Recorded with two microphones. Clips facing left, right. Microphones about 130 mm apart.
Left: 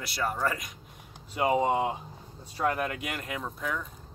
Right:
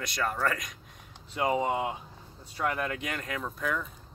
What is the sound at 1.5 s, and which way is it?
Speech, 30° left (ahead or behind).